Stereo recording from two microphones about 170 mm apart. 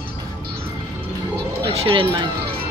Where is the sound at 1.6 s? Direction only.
30° right (ahead or behind).